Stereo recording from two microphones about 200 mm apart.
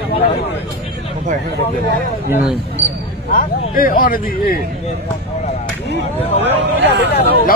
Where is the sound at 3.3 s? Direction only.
45° left (ahead or behind).